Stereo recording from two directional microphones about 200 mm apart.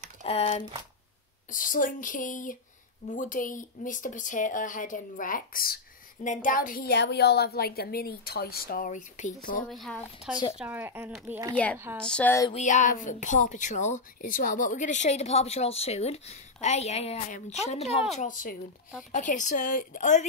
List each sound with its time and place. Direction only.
0.2 s speech: 30° left (ahead or behind)
1.5 s a woman's voice: 40° left (ahead or behind)
9.7 s speech: centre (ahead or behind)
10.6 s speech: 10° right (ahead or behind)
11.5 s a sound: 10° left (ahead or behind)
12.5 s speech: 40° left (ahead or behind)